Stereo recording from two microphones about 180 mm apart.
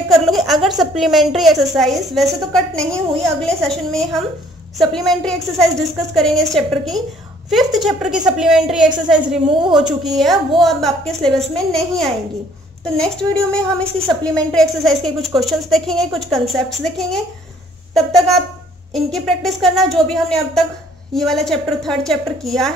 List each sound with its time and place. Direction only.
0.3 s a woman's voice: centre (ahead or behind)